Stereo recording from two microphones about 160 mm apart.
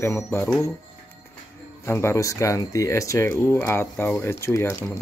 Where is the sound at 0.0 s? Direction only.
15° left (ahead or behind).